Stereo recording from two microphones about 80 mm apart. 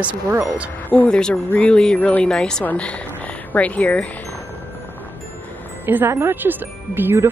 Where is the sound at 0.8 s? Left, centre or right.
Left.